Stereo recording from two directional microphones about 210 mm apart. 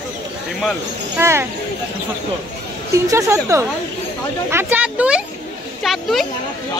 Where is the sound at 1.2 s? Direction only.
10° right (ahead or behind).